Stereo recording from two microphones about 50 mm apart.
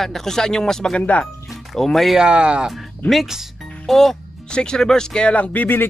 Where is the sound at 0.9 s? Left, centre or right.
Left.